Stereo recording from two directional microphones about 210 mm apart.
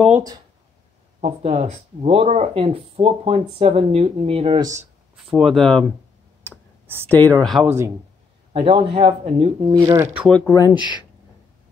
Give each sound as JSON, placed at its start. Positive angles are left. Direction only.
{"t": 1.2, "sound": "speech", "side_deg": -30}
{"t": 5.3, "sound": "speech", "side_deg": 0}
{"t": 7.1, "sound": "speech", "side_deg": 10}
{"t": 8.5, "sound": "speech", "side_deg": -25}
{"t": 10.2, "sound": "speech", "side_deg": 5}
{"t": 10.5, "sound": "speech", "side_deg": 20}